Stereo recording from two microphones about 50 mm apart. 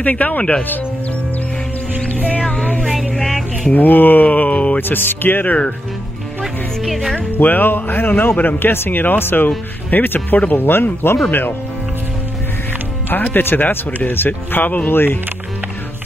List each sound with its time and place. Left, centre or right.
0.0 s speech: left
2.4 s a sound: centre
2.8 s a sound: centre
3.7 s speech: left
4.7 s speech: left
6.8 s speech: centre
7.3 s speech: left
13.1 s speech: left
14.9 s speech: left